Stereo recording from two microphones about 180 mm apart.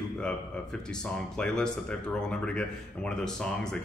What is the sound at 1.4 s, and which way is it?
Speech, 5° left (ahead or behind).